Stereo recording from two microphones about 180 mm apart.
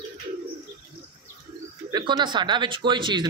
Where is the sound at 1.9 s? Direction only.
25° right (ahead or behind).